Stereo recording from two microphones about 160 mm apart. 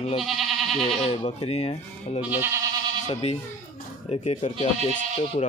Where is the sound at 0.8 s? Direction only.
35° left (ahead or behind).